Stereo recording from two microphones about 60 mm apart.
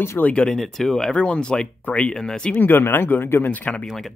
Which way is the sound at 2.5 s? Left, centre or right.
Left.